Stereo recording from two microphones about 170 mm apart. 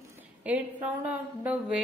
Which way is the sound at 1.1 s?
10° right (ahead or behind).